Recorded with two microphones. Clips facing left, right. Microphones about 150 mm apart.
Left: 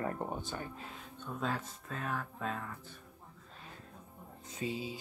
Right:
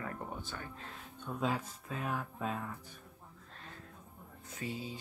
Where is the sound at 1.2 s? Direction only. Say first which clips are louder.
Right 2 dB; 10° right (ahead or behind).